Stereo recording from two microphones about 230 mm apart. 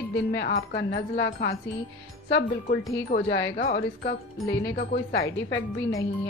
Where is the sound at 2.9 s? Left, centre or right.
Left.